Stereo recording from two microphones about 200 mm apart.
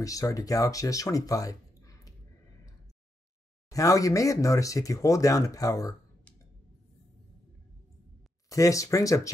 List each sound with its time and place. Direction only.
0.0 s speech: 15° left (ahead or behind)
3.7 s speech: 15° left (ahead or behind)
8.5 s speech: 15° left (ahead or behind)